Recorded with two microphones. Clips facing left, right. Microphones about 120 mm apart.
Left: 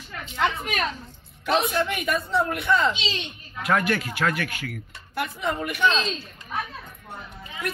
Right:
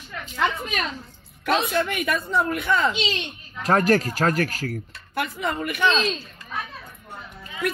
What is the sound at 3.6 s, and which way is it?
A man's voice, 40° right (ahead or behind).